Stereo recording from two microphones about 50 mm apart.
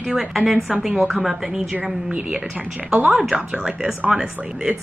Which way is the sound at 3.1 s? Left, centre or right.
Centre.